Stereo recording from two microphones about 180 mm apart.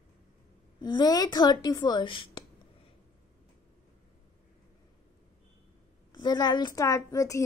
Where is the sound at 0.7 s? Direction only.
25° left (ahead or behind).